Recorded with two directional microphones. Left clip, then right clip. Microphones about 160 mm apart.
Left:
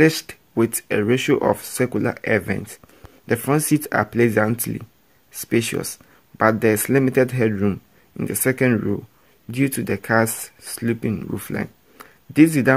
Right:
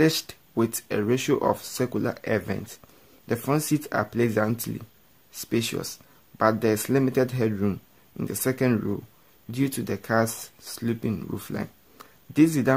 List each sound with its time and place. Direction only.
0.0 s speech: 15° left (ahead or behind)